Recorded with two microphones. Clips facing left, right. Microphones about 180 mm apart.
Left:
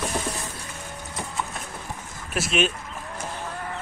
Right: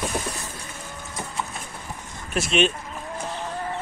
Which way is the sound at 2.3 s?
5° left (ahead or behind).